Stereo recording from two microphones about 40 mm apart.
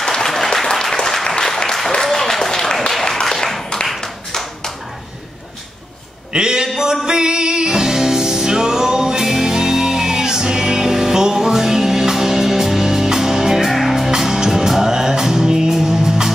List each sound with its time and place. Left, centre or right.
0.0 s applause: centre
3.3 s tap: centre
6.3 s a sound: centre
6.8 s music: centre
13.7 s music: centre